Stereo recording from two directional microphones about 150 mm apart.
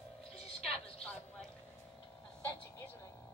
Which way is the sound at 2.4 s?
15° left (ahead or behind).